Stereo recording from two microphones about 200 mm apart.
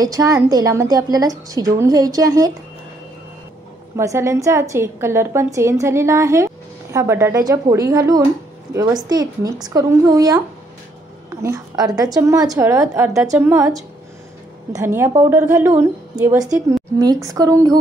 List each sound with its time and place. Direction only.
0.0 s a woman's voice: 15° right (ahead or behind)
3.9 s a woman's voice: 15° right (ahead or behind)
11.4 s a woman's voice: 20° right (ahead or behind)